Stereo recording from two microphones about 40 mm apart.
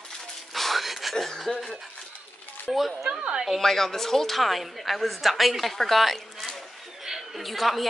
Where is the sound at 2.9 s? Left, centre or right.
Centre.